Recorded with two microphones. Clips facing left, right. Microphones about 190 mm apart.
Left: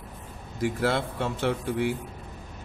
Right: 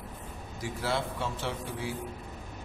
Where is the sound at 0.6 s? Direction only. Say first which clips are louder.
Left 6 dB; 60° left (ahead or behind).